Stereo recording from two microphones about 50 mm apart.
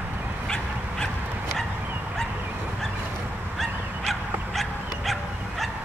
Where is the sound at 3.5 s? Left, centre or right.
Centre.